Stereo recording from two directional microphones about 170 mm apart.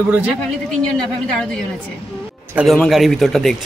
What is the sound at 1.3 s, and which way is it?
Speech, 5° left (ahead or behind).